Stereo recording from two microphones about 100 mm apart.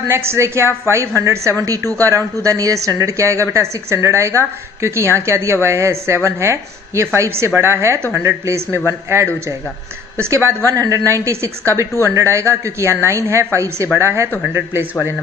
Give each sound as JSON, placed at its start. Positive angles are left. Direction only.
{"t": 0.1, "sound": "a woman's voice", "side_deg": -25}